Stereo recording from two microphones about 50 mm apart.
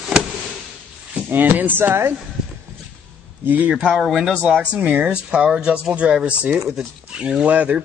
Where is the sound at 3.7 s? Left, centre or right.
Centre.